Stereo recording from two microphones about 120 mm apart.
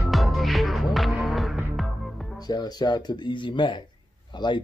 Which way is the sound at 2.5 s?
35° left (ahead or behind).